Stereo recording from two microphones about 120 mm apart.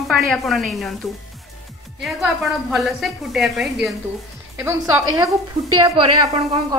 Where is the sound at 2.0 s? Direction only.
Centre (ahead or behind).